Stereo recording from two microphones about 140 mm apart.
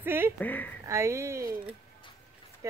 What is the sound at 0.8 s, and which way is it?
Speech, 20° right (ahead or behind).